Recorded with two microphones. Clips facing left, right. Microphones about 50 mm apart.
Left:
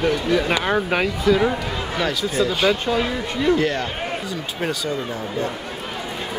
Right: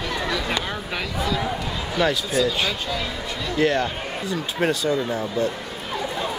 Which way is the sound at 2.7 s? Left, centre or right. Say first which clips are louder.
Left 7 dB; left.